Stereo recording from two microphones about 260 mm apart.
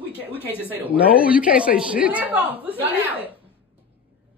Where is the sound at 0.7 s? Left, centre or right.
Centre.